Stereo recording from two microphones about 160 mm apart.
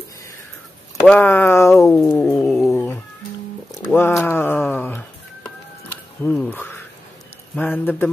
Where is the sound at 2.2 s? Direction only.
20° left (ahead or behind).